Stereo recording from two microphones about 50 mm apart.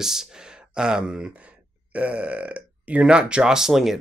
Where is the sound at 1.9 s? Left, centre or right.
Right.